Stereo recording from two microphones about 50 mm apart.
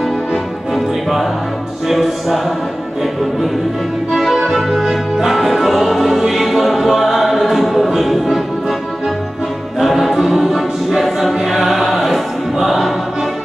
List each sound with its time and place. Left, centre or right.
1.9 s music: centre
4.1 s music: centre
9.8 s choir: centre